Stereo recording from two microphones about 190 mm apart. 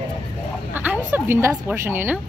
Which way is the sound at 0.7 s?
10° right (ahead or behind).